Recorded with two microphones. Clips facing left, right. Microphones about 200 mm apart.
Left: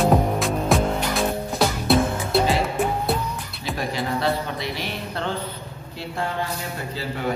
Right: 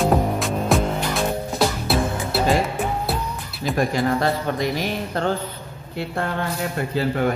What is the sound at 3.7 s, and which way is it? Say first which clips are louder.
Speech: right 6 dB; 50° right (ahead or behind).